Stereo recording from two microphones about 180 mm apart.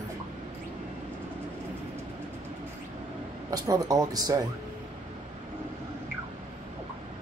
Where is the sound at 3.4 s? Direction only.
20° right (ahead or behind).